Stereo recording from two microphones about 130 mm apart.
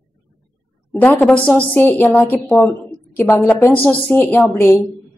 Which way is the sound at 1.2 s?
10° left (ahead or behind).